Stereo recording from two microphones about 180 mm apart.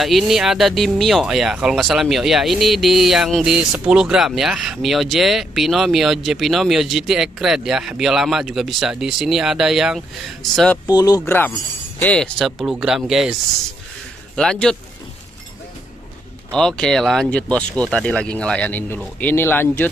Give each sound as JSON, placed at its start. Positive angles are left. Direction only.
{"t": 0.0, "sound": "speech", "side_deg": 0}
{"t": 10.9, "sound": "speech", "side_deg": 20}
{"t": 14.3, "sound": "speech", "side_deg": 5}
{"t": 16.5, "sound": "speech", "side_deg": 5}